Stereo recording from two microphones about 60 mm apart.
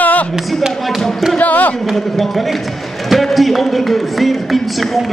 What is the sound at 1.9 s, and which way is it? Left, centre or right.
Speech, centre.